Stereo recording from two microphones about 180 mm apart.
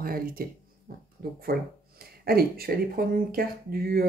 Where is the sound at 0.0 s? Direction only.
55° right (ahead or behind).